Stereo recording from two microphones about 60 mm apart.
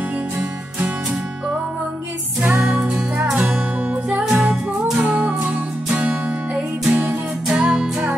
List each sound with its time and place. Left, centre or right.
2.4 s music: right; by 7.9 s centre